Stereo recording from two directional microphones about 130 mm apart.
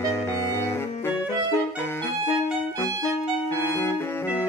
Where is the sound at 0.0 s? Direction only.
20° left (ahead or behind).